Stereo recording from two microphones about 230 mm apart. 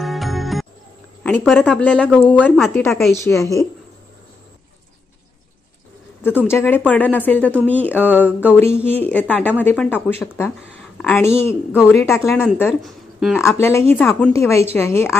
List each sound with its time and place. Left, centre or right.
0.0 s music: centre
1.2 s a woman's voice: centre
6.5 s a woman's voice: centre
12.6 s speech: centre
13.4 s a woman's voice: centre